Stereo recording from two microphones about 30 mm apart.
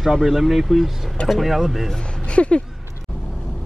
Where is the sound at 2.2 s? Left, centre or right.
Left.